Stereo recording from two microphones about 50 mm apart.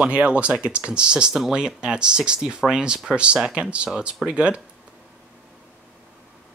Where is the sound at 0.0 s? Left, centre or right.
Right.